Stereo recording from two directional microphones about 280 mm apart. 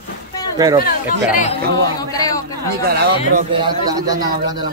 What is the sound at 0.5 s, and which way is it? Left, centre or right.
Speech, centre.